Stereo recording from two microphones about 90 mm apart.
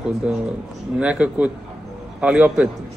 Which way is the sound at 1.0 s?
15° right (ahead or behind).